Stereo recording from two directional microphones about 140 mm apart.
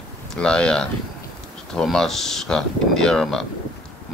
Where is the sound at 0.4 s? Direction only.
5° left (ahead or behind).